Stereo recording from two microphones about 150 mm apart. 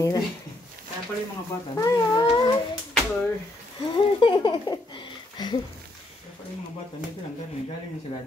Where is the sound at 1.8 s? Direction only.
30° left (ahead or behind).